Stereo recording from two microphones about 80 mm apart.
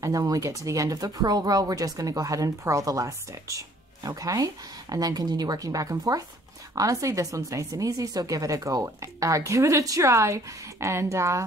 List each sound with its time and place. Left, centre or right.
0.0 s speech: right